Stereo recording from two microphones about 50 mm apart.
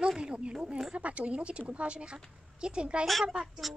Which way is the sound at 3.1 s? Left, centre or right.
Centre.